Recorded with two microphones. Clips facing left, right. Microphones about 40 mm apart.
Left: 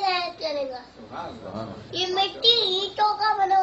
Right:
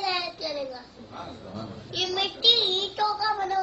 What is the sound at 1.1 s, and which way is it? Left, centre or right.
Speech, centre.